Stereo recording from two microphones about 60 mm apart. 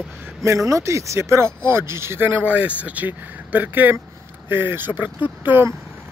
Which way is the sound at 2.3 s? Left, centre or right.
Right.